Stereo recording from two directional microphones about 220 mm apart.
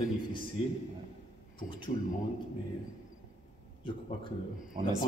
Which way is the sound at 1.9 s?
35° left (ahead or behind).